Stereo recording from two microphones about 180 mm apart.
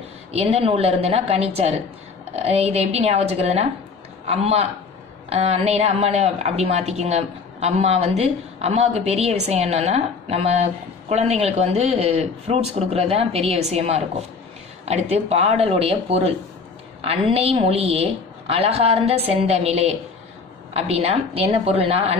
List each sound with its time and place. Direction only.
0.3 s a woman's voice: 35° right (ahead or behind)